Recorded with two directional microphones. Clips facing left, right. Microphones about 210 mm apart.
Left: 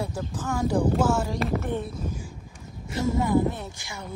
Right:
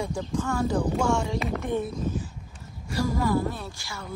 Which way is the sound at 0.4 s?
10° left (ahead or behind).